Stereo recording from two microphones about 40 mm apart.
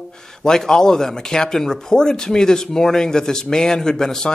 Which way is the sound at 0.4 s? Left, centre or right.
Centre.